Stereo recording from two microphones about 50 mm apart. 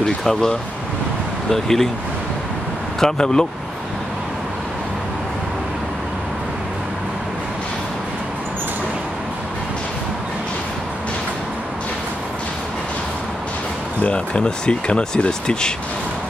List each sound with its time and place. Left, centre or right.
0.2 s speech: centre
3.0 s speech: centre
14.0 s speech: left